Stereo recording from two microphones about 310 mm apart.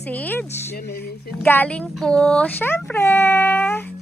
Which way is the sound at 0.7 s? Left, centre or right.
Left.